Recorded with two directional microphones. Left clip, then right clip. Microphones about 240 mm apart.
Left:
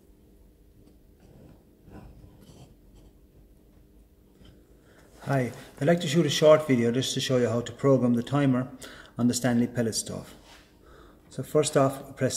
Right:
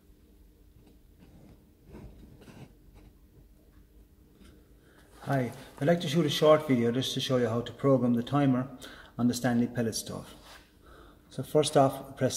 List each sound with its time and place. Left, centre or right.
5.2 s a man's voice: centre